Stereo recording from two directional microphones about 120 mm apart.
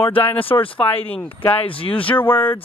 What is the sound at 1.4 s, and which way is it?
Speech, 50° left (ahead or behind).